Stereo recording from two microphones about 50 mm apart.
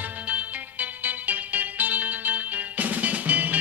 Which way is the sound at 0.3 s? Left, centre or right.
Right.